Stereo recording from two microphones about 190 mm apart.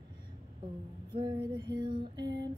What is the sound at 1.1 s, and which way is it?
Music, 25° right (ahead or behind).